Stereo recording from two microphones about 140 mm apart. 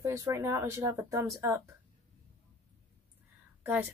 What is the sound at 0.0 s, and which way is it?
Speech, 20° right (ahead or behind).